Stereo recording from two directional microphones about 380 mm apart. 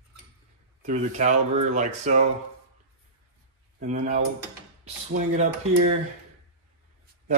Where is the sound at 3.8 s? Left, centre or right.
Centre.